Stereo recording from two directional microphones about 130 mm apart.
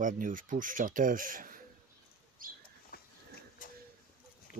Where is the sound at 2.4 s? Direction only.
90° right.